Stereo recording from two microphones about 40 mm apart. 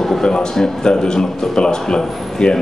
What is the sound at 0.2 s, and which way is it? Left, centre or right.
A man's voice, centre.